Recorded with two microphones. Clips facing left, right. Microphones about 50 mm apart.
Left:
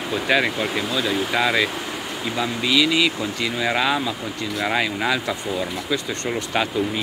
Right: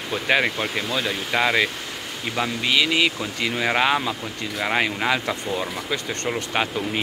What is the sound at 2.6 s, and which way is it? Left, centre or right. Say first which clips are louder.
Speech: left 2 dB; right.